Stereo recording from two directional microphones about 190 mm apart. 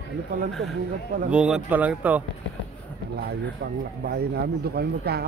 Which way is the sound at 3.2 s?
60° right (ahead or behind).